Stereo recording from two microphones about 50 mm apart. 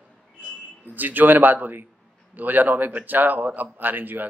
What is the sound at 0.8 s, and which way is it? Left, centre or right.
A man's voice, right.